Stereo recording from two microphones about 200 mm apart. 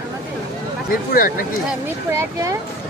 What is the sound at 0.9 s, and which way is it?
Speech, 45° left (ahead or behind).